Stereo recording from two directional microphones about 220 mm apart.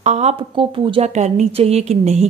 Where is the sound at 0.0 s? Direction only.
30° right (ahead or behind).